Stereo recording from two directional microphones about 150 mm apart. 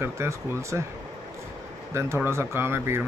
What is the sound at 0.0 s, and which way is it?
Speech, 20° right (ahead or behind).